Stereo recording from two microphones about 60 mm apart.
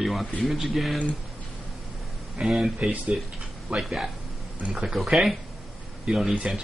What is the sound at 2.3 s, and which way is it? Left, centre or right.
Speech, centre.